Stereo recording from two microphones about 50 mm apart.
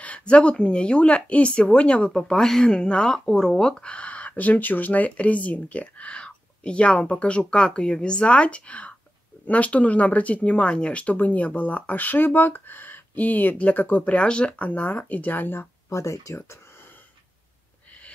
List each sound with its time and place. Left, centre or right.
0.0 s speech: left
14.6 s speech: left
15.9 s speech: left